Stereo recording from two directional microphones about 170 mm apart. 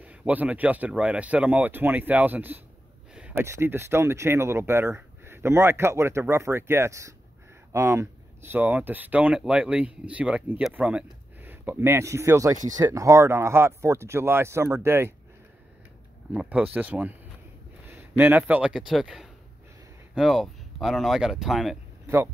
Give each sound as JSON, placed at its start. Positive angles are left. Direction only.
{"t": 0.0, "sound": "speech", "side_deg": -10}
{"t": 16.3, "sound": "speech", "side_deg": -10}
{"t": 22.0, "sound": "a sound", "side_deg": -15}